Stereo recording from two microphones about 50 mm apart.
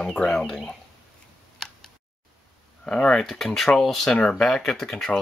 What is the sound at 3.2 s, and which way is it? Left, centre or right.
Speech, centre.